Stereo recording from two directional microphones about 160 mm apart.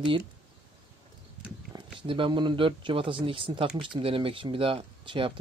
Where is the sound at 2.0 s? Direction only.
30° right (ahead or behind).